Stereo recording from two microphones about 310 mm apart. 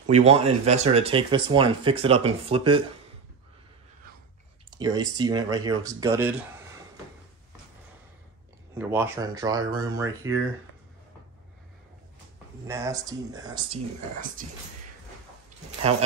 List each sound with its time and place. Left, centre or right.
0.0 s speech: right
4.6 s speech: centre
8.7 s speech: centre
12.6 s speech: centre
14.4 s speech: right